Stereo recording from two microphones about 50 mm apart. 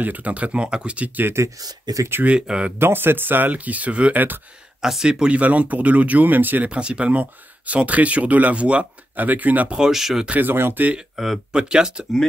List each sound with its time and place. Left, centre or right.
0.0 s speech: right
0.9 s speech: right
1.2 s speech: right
2.2 s speech: right
2.8 s speech: right
4.8 s speech: centre
5.2 s speech: right
6.7 s speech: right
9.1 s speech: right
9.8 s speech: centre
10.3 s speech: right
11.0 s speech: centre